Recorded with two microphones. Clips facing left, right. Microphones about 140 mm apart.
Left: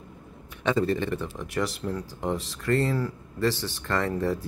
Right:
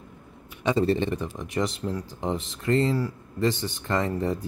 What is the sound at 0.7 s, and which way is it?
Speech, 25° right (ahead or behind).